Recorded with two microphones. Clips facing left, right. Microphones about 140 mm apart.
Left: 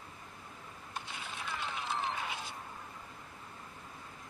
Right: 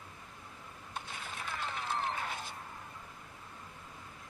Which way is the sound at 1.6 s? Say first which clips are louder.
Right 1 dB; centre (ahead or behind).